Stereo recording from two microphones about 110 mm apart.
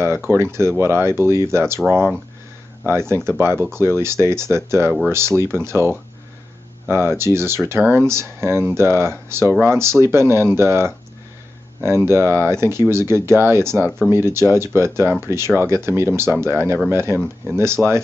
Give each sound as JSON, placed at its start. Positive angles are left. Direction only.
{"t": 0.0, "sound": "speech", "side_deg": -20}
{"t": 2.8, "sound": "speech", "side_deg": -20}
{"t": 17.8, "sound": "speech", "side_deg": 5}